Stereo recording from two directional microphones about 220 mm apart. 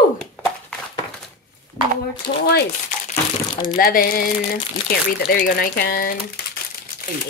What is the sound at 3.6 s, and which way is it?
Speech, 40° left (ahead or behind).